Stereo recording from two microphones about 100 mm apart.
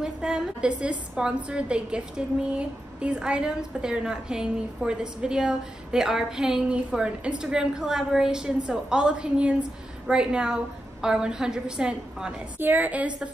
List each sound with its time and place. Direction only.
0.0 s a woman's voice: 10° right (ahead or behind)
12.5 s a woman's voice: 20° right (ahead or behind)